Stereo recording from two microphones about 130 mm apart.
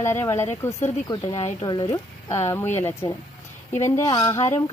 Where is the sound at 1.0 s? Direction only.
35° left (ahead or behind).